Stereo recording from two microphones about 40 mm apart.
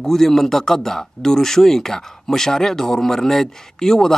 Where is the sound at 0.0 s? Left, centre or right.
Centre.